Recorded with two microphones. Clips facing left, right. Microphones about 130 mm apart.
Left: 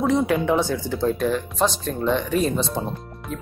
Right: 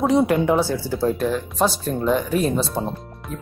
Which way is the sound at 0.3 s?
5° right (ahead or behind).